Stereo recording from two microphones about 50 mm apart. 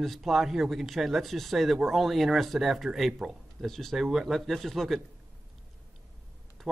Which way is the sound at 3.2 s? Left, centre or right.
Right.